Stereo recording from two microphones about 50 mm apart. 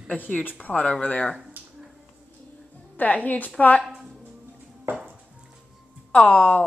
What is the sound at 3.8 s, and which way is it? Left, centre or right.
Music, centre.